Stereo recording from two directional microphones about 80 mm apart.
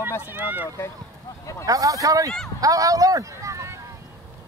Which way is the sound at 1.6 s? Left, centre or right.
Right.